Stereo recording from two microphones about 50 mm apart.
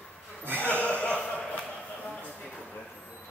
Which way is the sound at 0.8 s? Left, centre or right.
Left.